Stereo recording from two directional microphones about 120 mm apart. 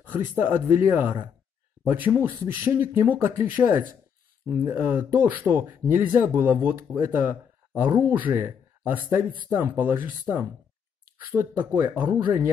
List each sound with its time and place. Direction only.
0.4 s speech: 20° right (ahead or behind)
11.1 s speech: 20° right (ahead or behind)